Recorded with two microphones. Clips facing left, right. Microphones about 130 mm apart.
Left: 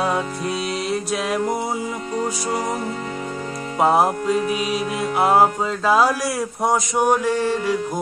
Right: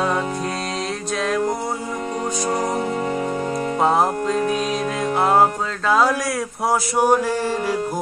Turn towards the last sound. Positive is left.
turn(degrees=-10)  # may be behind; listen again after turning